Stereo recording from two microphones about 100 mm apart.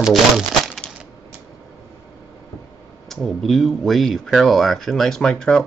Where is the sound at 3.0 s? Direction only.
5° left (ahead or behind).